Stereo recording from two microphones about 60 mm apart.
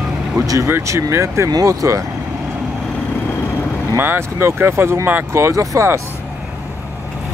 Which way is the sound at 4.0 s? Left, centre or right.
Right.